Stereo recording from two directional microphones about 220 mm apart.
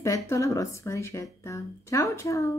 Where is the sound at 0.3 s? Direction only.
15° left (ahead or behind).